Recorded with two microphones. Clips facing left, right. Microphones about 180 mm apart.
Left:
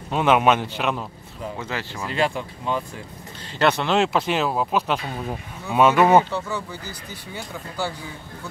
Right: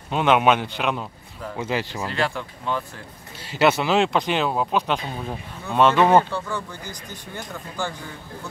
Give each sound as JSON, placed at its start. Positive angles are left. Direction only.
{"t": 0.1, "sound": "speech", "side_deg": 0}
{"t": 1.6, "sound": "speech", "side_deg": -15}
{"t": 2.1, "sound": "speech", "side_deg": 20}
{"t": 3.5, "sound": "speech", "side_deg": -5}